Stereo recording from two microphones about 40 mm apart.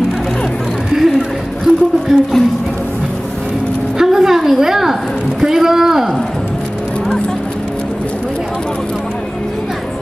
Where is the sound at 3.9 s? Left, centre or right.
Centre.